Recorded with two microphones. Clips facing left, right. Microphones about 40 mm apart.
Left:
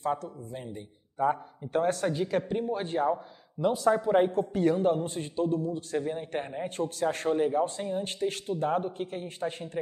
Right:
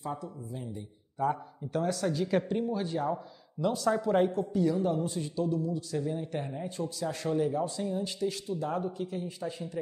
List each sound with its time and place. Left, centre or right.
0.0 s speech: left
1.1 s a man's voice: left
3.1 s speech: left
4.3 s a man's voice: left